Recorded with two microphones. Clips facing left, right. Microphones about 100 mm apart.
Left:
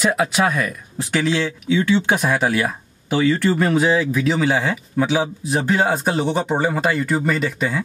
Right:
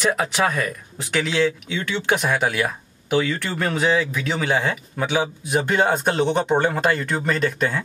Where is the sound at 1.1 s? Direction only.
35° left (ahead or behind).